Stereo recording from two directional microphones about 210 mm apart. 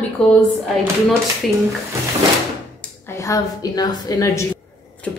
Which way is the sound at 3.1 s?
15° left (ahead or behind).